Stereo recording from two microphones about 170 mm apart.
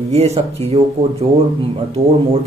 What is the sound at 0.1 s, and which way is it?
Speech, 40° right (ahead or behind).